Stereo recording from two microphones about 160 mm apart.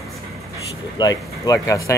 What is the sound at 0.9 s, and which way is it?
Speech, 25° left (ahead or behind).